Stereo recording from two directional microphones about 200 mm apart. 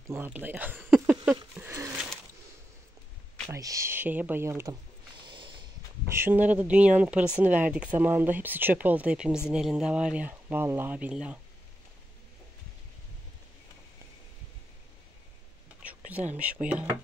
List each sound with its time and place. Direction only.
0.1 s speech: 10° right (ahead or behind)
1.3 s a sound: 15° right (ahead or behind)
3.4 s speech: 15° right (ahead or behind)
5.2 s snort: 25° right (ahead or behind)
6.0 s speech: 10° right (ahead or behind)
16.1 s speech: 5° right (ahead or behind)